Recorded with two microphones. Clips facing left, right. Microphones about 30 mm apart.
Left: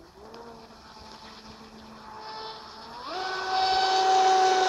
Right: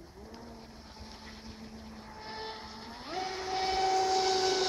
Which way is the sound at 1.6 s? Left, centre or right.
Left.